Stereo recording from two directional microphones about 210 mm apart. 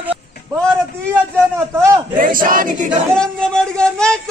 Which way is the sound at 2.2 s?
40° right (ahead or behind).